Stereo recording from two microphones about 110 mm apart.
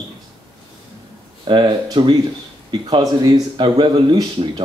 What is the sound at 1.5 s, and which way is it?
Speech, 45° right (ahead or behind).